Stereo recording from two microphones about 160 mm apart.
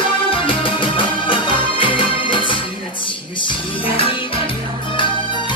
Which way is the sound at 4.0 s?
35° left (ahead or behind).